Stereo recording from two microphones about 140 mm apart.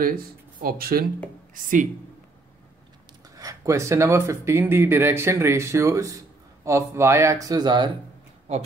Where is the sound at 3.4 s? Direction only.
25° right (ahead or behind).